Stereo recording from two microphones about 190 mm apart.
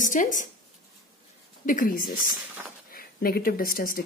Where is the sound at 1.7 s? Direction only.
45° left (ahead or behind).